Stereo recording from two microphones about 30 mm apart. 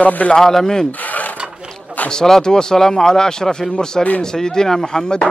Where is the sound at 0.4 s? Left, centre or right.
Centre.